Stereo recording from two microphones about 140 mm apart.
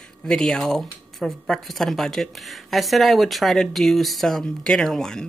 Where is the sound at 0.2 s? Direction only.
5° left (ahead or behind).